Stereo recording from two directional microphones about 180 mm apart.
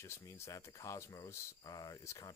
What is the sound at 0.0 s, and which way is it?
Speech, 15° left (ahead or behind).